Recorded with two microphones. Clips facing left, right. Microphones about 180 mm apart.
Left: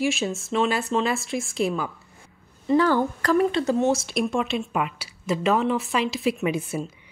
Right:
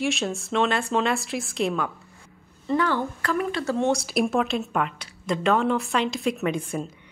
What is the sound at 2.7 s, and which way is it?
Speech, 40° left (ahead or behind).